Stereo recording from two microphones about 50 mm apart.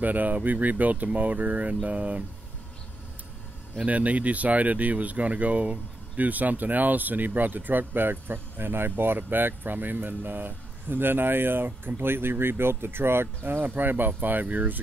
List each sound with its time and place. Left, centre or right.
0.0 s speech: right
3.8 s speech: right